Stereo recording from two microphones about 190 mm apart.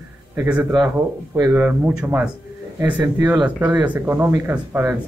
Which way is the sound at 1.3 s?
15° right (ahead or behind).